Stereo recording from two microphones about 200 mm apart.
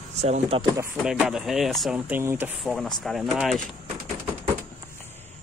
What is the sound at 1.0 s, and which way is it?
Speech, 5° right (ahead or behind).